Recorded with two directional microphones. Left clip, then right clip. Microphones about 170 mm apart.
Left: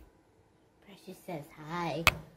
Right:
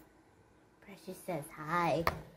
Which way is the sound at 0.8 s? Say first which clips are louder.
Right 2 dB; 5° right (ahead or behind).